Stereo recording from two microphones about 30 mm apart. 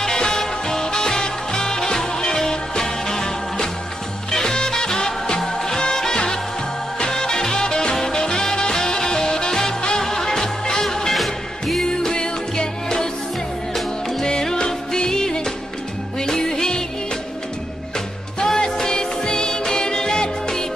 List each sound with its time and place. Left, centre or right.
0.0 s music: left
5.4 s music: centre
11.1 s music: centre
11.8 s music: centre
14.4 s music: centre
18.4 s music: left